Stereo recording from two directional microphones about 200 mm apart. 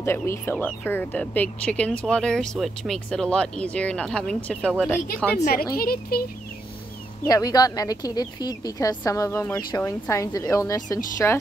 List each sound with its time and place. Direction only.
0.0 s speech: 10° left (ahead or behind)
5.4 s speech: 45° left (ahead or behind)
7.2 s a woman's voice: 20° left (ahead or behind)